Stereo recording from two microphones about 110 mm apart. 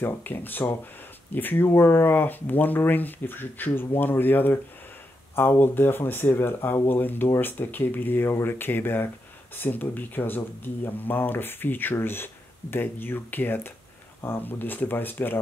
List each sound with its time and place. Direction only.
0.0 s speech: 15° left (ahead or behind)